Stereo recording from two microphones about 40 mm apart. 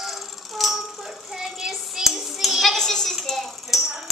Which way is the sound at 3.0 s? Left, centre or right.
Centre.